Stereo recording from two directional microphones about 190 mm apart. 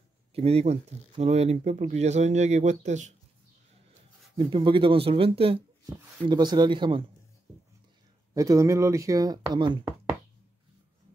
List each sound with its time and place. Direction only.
0.3 s speech: 30° right (ahead or behind)
4.4 s speech: 25° right (ahead or behind)
8.4 s speech: 15° right (ahead or behind)